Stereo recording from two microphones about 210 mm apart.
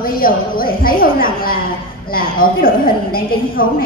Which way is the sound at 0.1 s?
45° left (ahead or behind).